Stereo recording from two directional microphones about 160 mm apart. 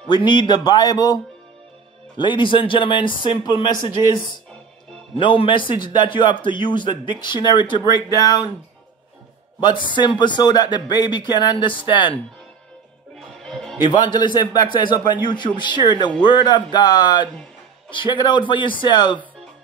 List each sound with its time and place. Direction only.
0.1 s speech: 30° left (ahead or behind)
9.6 s speech: 30° left (ahead or behind)
13.1 s music: centre (ahead or behind)
13.8 s speech: 30° left (ahead or behind)